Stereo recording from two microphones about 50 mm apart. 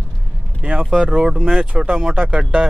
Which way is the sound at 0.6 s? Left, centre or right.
Right.